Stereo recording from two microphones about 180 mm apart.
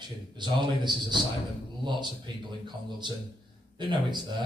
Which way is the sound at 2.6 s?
25° right (ahead or behind).